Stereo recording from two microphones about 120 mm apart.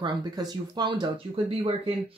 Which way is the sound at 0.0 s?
35° right (ahead or behind).